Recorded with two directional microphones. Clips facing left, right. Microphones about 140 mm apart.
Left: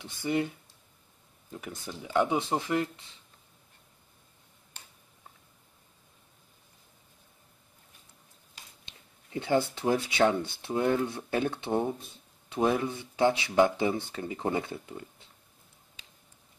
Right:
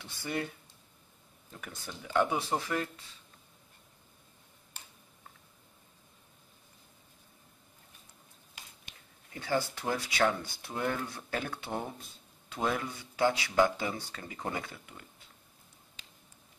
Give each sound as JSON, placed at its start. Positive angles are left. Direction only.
{"t": 0.0, "sound": "speech", "side_deg": 20}
{"t": 1.6, "sound": "speech", "side_deg": 15}
{"t": 8.8, "sound": "speech", "side_deg": 25}